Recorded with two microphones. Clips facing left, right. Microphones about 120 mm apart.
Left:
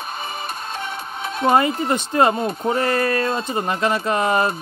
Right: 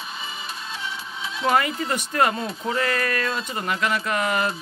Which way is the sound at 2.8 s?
30° left (ahead or behind).